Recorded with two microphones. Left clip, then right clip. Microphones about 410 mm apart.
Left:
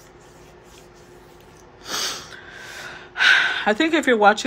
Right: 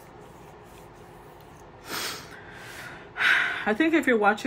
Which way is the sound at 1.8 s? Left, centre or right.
Centre.